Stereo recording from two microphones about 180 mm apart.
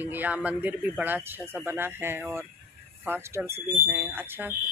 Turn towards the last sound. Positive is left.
turn(degrees=-10)  # may be behind; listen again after turning